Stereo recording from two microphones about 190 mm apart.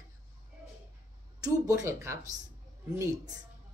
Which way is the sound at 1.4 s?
15° right (ahead or behind).